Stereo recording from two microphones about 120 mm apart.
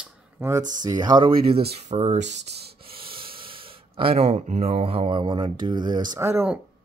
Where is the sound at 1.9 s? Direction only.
70° right (ahead or behind); by 6.2 s 35° right (ahead or behind).